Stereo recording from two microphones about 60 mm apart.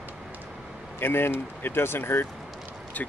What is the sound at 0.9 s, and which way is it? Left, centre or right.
Speech, left.